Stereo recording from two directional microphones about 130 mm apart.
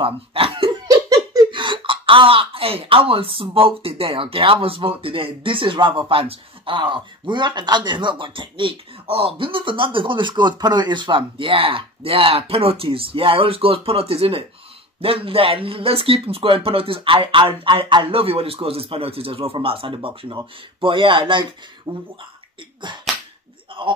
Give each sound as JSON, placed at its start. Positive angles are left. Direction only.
{"t": 0.0, "sound": "laughter", "side_deg": -45}
{"t": 0.8, "sound": "giggle", "side_deg": -25}
{"t": 1.5, "sound": "speech", "side_deg": -40}
{"t": 23.7, "sound": "a sound", "side_deg": -40}